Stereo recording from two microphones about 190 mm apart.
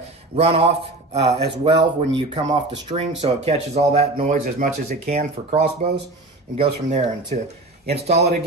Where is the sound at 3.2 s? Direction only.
35° right (ahead or behind).